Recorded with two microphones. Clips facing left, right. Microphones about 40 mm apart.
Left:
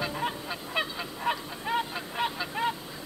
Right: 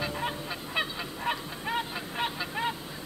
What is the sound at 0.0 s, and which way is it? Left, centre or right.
Honk, centre.